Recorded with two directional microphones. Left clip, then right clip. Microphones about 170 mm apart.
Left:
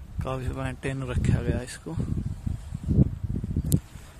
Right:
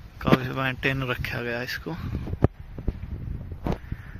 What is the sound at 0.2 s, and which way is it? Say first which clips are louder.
Speech: right 9 dB; 5° left (ahead or behind).